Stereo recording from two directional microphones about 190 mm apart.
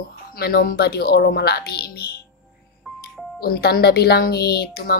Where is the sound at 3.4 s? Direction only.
50° left (ahead or behind).